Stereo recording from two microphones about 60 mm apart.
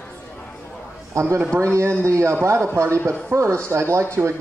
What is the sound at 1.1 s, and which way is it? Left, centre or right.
Speech, right.